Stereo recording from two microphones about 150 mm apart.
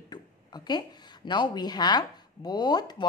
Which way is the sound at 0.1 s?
30° left (ahead or behind).